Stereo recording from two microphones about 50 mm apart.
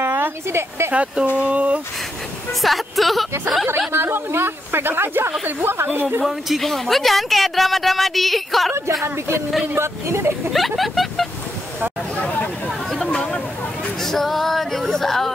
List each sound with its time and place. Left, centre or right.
0.0 s a sound: right
0.9 s speech: right
2.6 s speech: centre
3.9 s speech: right
5.4 s speech: right
6.2 s speech: centre
9.0 s speech: right
10.5 s speech: centre
12.2 s a sound: left
12.9 s a sound: centre
14.0 s female singing: centre